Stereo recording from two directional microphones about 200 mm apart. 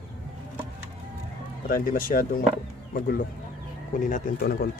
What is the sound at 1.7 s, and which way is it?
A man's voice, 45° left (ahead or behind).